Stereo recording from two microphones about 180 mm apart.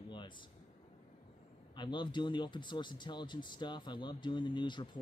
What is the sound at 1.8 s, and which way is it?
Speech, 25° left (ahead or behind).